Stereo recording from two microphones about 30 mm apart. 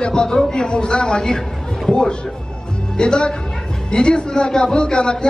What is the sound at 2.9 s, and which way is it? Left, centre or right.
A man's voice, left.